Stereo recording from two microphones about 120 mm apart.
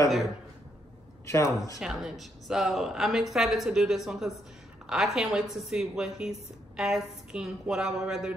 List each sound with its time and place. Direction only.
1.2 s speech: 25° left (ahead or behind)
1.8 s a woman's voice: 5° right (ahead or behind)